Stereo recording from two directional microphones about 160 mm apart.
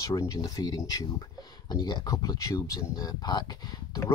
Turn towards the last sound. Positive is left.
turn(degrees=25)  # may be behind; listen again after turning